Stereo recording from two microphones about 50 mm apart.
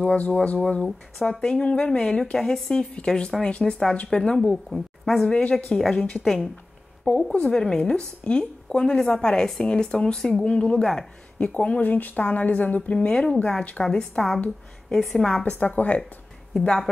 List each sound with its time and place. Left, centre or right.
0.0 s speech: left
0.8 s speech: centre
1.4 s a woman's voice: centre
2.7 s a woman's voice: centre
4.6 s a woman's voice: centre
5.2 s a woman's voice: centre
7.1 s a woman's voice: centre
10.4 s speech: left
10.8 s a woman's voice: centre
11.3 s speech: left
12.9 s a woman's voice: centre
15.4 s speech: left
16.6 s a woman's voice: centre